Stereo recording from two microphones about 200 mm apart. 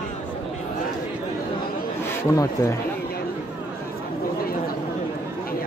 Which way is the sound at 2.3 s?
15° left (ahead or behind).